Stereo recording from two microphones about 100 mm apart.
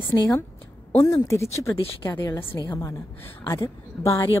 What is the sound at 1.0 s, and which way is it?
A woman's voice, 30° left (ahead or behind).